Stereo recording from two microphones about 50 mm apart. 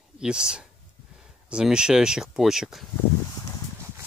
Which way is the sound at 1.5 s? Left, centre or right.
Centre.